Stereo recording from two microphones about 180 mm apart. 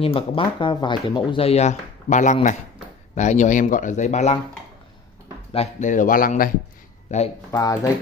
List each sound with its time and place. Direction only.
0.0 s speech: 30° left (ahead or behind)
5.5 s speech: 40° left (ahead or behind)
7.5 s speech: 20° left (ahead or behind)